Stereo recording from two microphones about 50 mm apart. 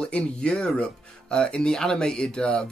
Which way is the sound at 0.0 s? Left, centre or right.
Left.